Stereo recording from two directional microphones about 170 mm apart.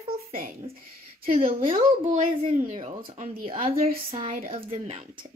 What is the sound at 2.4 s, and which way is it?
A woman's voice, 45° right (ahead or behind).